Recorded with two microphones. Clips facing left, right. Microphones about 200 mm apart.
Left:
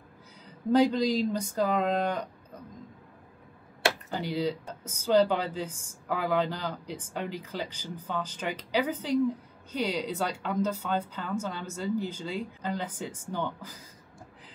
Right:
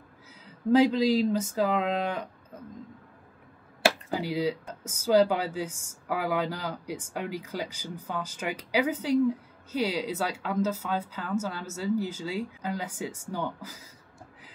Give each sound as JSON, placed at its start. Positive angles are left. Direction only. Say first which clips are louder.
{"t": 0.7, "sound": "speech", "louder": "right 2 dB", "side_deg": -5}
{"t": 4.1, "sound": "speech", "louder": "right 2 dB", "side_deg": -5}